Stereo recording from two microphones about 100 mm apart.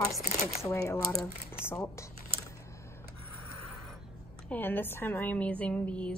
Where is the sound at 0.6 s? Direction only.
30° left (ahead or behind).